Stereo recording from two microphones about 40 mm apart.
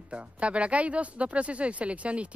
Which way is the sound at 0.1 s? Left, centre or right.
Right.